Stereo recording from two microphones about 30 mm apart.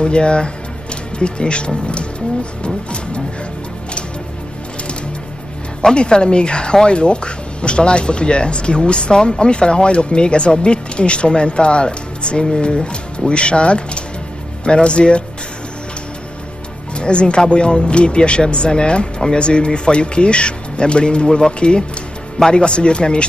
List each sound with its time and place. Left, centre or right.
0.0 s speech: left
2.6 s vehicle: left
5.9 s speech: left
17.0 s speech: left